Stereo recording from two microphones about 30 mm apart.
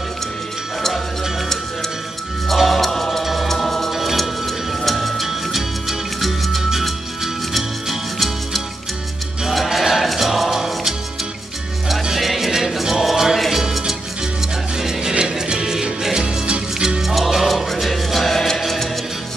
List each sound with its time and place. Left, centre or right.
2.4 s music: centre
9.7 s music: centre
12.2 s music: centre
14.8 s music: centre
15.1 s music: right
15.5 s music: centre
17.0 s music: centre